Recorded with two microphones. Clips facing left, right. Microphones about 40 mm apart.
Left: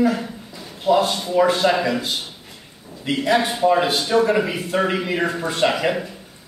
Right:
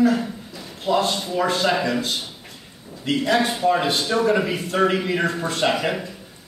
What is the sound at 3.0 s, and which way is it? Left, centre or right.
Speech, centre.